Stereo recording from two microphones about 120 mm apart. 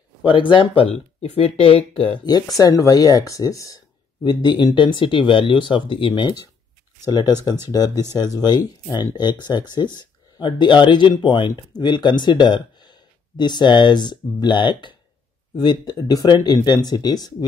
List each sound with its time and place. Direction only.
0.5 s speech: 45° left (ahead or behind)